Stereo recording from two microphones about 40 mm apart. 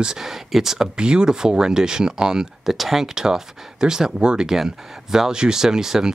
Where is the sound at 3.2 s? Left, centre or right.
Centre.